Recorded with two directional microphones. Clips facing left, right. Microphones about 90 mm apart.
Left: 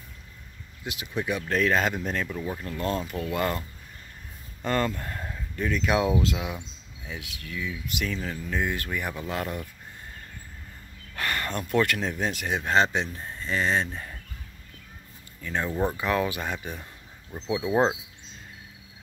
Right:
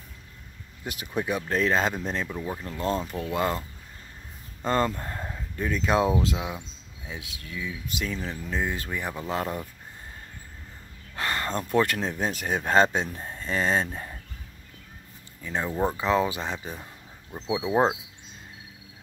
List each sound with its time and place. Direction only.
0.8 s speech: 40° right (ahead or behind); by 3.6 s 25° right (ahead or behind)
4.6 s a sound: 25° right (ahead or behind)
5.7 s speech: 30° right (ahead or behind)
11.1 s speech: 25° right (ahead or behind); by 13.1 s 45° right (ahead or behind)
13.1 s speech: 20° right (ahead or behind)
13.4 s speech: 40° right (ahead or behind)
15.4 s speech: 20° right (ahead or behind)
15.7 s speech: 10° right (ahead or behind)
16.0 s speech: 25° right (ahead or behind)
17.3 s speech: 10° right (ahead or behind)